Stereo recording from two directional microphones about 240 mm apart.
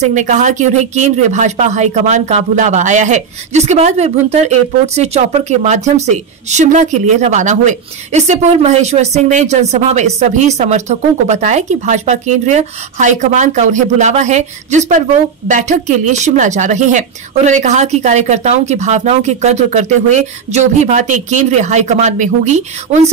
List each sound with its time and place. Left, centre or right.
0.0 s speech: right